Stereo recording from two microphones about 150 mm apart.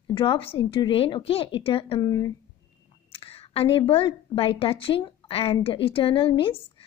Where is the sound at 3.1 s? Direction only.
40° left (ahead or behind).